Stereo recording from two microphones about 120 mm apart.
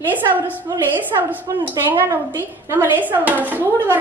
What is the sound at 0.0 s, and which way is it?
Speech, 15° right (ahead or behind).